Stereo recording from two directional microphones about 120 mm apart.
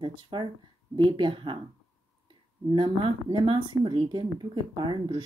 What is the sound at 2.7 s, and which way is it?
A woman's voice, 45° right (ahead or behind).